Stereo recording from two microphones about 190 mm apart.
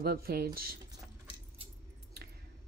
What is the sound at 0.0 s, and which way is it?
Speech, 55° right (ahead or behind).